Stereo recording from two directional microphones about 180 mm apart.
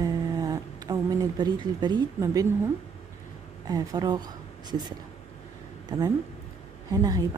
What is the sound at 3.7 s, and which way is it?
Speech, 20° right (ahead or behind).